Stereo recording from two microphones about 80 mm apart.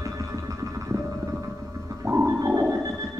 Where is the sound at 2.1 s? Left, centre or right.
Right.